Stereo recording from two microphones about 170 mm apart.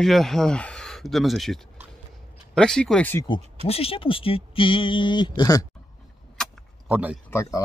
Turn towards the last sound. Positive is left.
turn(degrees=15)  # may be behind; listen again after turning